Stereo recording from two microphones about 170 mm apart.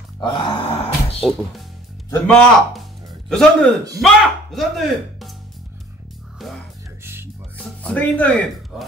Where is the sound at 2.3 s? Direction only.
5° left (ahead or behind).